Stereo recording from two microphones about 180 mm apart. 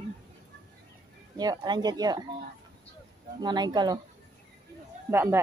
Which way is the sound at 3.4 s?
25° right (ahead or behind).